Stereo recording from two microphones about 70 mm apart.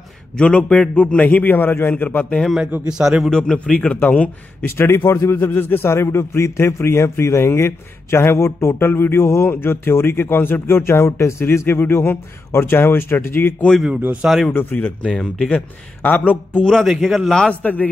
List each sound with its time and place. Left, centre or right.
0.4 s a man's voice: centre
2.4 s a man's voice: centre
3.3 s a man's voice: centre; by 13.7 s left
14.2 s a man's voice: centre
14.5 s a man's voice: left
15.0 s speech: centre
16.0 s a man's voice: left
16.6 s speech: centre
16.9 s a man's voice: centre